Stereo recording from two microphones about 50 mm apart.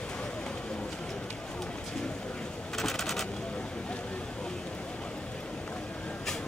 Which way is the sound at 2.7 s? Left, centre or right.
Centre.